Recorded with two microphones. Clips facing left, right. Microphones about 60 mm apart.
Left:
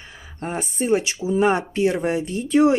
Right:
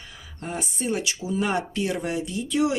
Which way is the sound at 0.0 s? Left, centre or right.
Left.